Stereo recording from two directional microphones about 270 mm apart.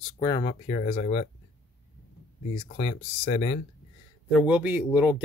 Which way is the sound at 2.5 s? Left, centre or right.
Left.